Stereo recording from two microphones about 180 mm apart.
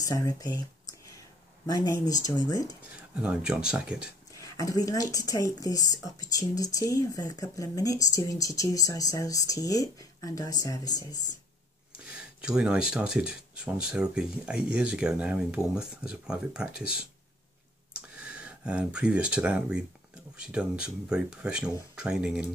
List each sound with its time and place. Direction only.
0.0 s speech: 20° left (ahead or behind)
1.7 s speech: 20° left (ahead or behind)
3.2 s speech: 5° right (ahead or behind)
4.3 s speech: 20° left (ahead or behind)
12.0 s a sound: 5° right (ahead or behind)
12.9 s speech: 5° right (ahead or behind)
18.1 s speech: 5° right (ahead or behind)